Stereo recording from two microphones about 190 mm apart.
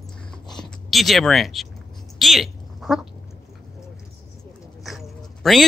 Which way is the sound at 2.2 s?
Centre (ahead or behind).